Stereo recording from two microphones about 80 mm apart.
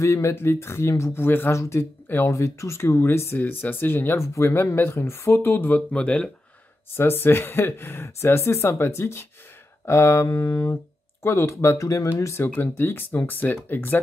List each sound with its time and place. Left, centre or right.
0.0 s speech: left
2.3 s speech: left
5.8 s speech: centre
6.9 s speech: left